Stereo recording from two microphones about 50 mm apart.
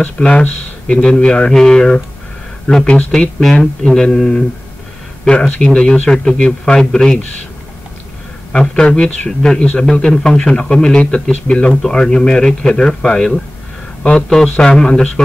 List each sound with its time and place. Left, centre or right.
0.0 s speech: left
1.0 s a man's voice: centre
8.5 s a man's voice: centre